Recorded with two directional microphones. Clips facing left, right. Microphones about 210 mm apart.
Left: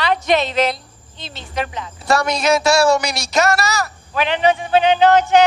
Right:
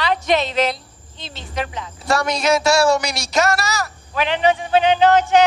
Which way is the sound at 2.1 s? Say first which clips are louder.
Left 1 dB; 60° left (ahead or behind).